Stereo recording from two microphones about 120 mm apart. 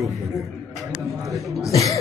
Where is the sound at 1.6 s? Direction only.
25° left (ahead or behind).